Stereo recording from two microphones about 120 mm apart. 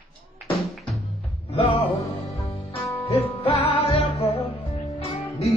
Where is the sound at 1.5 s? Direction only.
55° left (ahead or behind).